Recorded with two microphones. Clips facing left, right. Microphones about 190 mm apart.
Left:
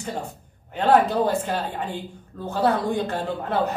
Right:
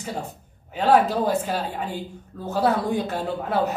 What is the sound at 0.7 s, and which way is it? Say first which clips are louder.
A man's voice: even; 5° right (ahead or behind).